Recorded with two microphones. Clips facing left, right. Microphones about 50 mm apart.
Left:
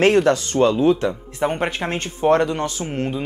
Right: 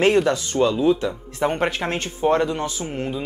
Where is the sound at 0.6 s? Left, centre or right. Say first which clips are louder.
Left 1 dB; left.